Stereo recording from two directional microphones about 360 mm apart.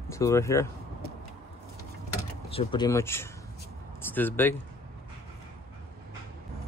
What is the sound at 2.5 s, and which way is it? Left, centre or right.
Speech, centre.